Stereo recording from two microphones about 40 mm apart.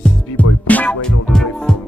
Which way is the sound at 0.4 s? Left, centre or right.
Left.